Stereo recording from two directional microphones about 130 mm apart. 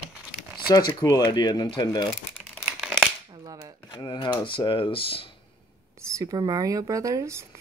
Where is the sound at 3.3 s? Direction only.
30° right (ahead or behind).